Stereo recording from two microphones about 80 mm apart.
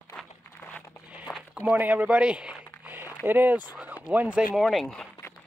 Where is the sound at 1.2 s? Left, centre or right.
Centre.